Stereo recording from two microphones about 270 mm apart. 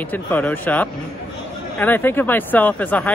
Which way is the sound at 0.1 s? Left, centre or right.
Centre.